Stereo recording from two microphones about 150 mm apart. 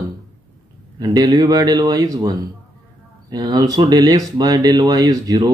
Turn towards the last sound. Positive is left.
turn(degrees=-25)  # may be behind; listen again after turning